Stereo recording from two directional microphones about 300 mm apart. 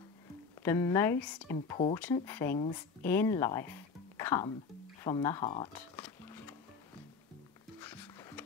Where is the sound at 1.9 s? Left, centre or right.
Centre.